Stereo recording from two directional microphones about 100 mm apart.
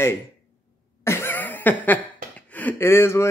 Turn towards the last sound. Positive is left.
turn(degrees=25)  # may be behind; listen again after turning